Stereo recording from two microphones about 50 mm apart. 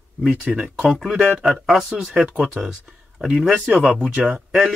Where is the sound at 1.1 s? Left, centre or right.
Right.